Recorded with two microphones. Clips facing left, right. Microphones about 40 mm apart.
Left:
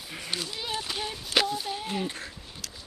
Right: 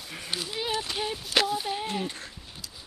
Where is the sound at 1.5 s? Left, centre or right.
Centre.